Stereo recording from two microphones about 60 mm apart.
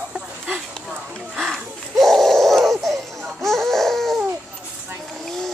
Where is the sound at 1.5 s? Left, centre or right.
Centre.